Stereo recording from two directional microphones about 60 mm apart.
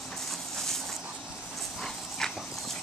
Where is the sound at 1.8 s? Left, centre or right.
Centre.